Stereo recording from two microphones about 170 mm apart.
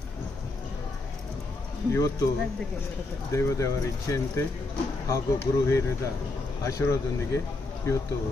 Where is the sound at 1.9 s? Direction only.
20° left (ahead or behind).